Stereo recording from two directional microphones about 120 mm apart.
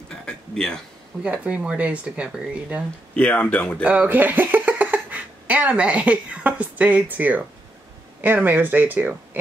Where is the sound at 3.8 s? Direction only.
15° right (ahead or behind).